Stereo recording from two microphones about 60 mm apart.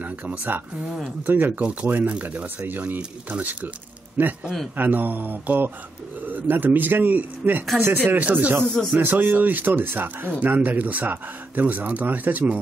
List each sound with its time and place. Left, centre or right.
0.0 s a man's voice: right
8.8 s speech: centre
9.1 s a man's voice: right